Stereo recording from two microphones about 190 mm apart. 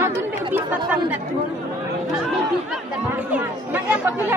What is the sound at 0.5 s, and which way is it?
Speech, 10° right (ahead or behind).